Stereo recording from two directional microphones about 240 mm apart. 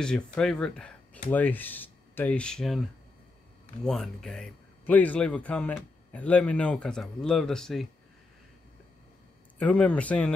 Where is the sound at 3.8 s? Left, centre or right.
Centre.